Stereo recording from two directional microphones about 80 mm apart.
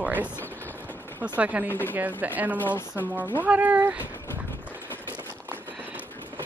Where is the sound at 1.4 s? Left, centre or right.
Centre.